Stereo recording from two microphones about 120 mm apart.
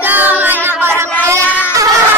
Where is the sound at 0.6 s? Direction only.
15° right (ahead or behind).